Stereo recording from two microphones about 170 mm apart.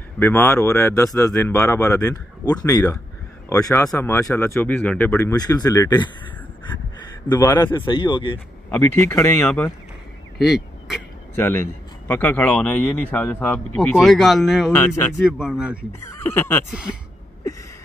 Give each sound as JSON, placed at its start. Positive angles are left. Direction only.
{"t": 0.2, "sound": "speech", "side_deg": 15}
{"t": 7.2, "sound": "speech", "side_deg": 20}
{"t": 8.6, "sound": "speech", "side_deg": 10}
{"t": 10.4, "sound": "speech", "side_deg": 0}
{"t": 11.3, "sound": "speech", "side_deg": 15}
{"t": 13.7, "sound": "speech", "side_deg": 0}
{"t": 14.8, "sound": "speech", "side_deg": 15}
{"t": 15.2, "sound": "speech", "side_deg": -5}
{"t": 16.3, "sound": "speech", "side_deg": 15}